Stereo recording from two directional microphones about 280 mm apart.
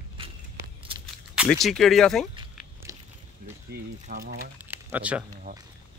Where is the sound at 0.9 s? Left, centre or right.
Centre.